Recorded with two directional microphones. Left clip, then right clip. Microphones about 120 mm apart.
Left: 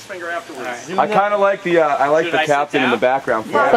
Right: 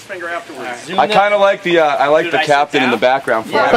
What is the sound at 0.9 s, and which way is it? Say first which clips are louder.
A man's voice: right 4 dB; 45° right (ahead or behind).